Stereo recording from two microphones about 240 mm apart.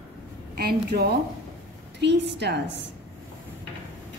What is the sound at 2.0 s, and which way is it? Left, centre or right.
Speech, right.